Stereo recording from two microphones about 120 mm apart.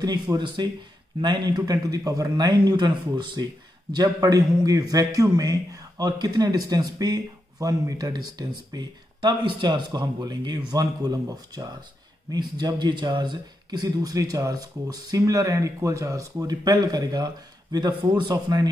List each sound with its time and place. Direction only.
0.0 s a man's voice: 35° right (ahead or behind)